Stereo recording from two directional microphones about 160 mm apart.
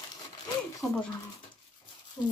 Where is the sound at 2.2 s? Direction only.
25° left (ahead or behind).